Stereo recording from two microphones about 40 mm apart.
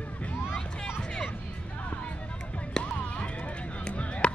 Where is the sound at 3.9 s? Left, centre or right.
Left.